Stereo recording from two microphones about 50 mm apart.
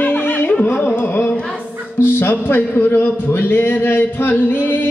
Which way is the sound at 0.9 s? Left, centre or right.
Left.